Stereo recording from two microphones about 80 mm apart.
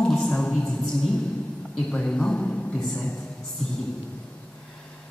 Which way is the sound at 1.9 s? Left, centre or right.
Centre.